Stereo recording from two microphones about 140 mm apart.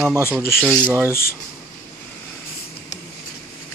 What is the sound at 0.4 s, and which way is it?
Speech, 15° left (ahead or behind).